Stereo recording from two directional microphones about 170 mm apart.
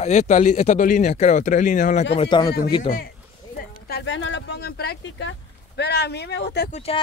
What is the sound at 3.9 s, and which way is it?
Speech, 90° left.